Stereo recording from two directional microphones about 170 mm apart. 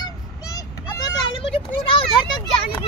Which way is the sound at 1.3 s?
30° left (ahead or behind).